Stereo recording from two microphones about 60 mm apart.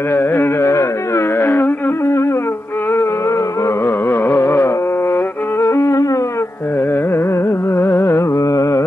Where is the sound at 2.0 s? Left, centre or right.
Left.